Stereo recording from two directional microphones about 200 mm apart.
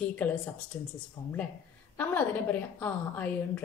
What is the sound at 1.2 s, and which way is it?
Speech, 30° left (ahead or behind).